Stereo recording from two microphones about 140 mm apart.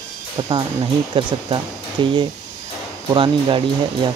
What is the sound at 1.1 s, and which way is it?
Speech, 35° right (ahead or behind).